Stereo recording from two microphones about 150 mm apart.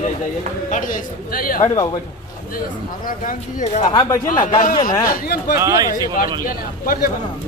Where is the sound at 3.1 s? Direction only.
65° left (ahead or behind).